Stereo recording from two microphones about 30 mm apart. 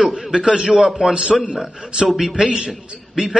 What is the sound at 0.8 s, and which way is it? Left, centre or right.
Speech, right.